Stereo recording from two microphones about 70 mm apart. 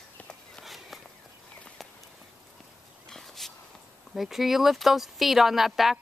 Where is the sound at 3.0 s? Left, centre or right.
Centre.